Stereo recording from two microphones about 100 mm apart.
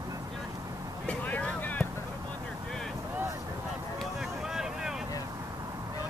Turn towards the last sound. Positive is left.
turn(degrees=-5)  # may be behind; listen again after turning